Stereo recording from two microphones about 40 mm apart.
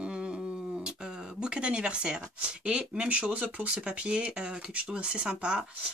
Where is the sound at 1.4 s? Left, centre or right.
Right.